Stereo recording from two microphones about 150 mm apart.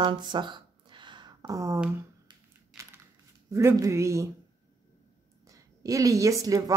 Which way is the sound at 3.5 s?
20° right (ahead or behind).